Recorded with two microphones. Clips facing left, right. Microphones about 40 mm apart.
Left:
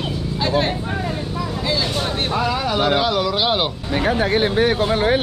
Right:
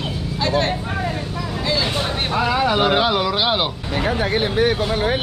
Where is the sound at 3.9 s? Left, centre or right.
Left.